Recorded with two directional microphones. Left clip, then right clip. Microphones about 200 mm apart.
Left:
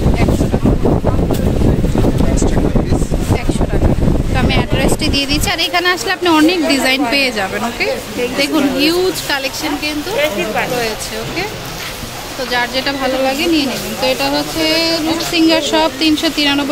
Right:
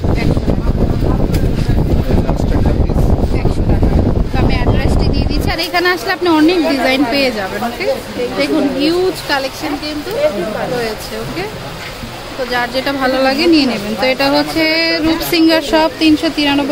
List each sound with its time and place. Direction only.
4.5 s a woman's voice: 5° left (ahead or behind)
12.5 s speech: 10° right (ahead or behind); by 15.4 s 35° right (ahead or behind)
15.7 s a woman's voice: 10° right (ahead or behind)